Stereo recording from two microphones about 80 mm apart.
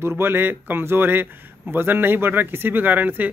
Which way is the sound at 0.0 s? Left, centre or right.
Right.